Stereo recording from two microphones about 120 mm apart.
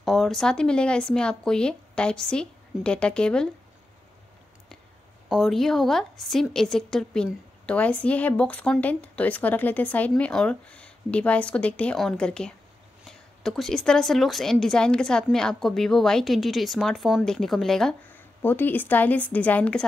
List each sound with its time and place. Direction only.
0.0 s a woman's voice: centre (ahead or behind)
5.3 s a woman's voice: centre (ahead or behind)
18.1 s a woman's voice: 15° left (ahead or behind)